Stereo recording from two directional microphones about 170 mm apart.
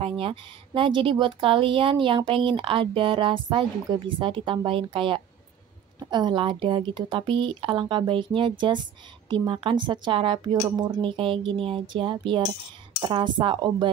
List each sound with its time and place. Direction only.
0.0 s speech: 30° right (ahead or behind)